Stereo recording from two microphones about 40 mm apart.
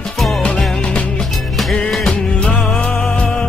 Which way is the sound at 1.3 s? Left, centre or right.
Centre.